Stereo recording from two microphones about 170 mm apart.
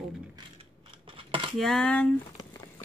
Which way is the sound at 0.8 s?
30° right (ahead or behind).